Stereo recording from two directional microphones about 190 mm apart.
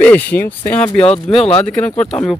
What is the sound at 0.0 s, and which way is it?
Speech, 10° left (ahead or behind).